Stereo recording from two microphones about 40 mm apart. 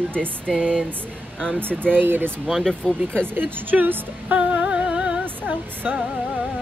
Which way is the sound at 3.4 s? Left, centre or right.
Right.